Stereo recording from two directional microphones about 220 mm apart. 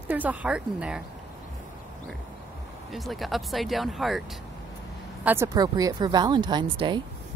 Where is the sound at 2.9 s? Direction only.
Centre (ahead or behind); by 7.0 s 20° right (ahead or behind).